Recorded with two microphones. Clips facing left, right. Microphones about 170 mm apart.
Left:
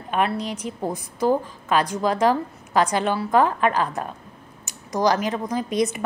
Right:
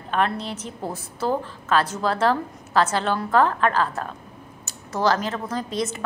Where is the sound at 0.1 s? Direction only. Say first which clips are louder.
Left 1 dB; 10° left (ahead or behind).